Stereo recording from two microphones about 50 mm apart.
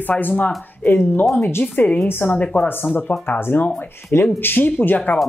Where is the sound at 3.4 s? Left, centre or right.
Left.